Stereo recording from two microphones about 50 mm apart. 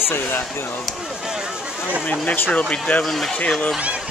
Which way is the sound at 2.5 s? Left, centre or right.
Left.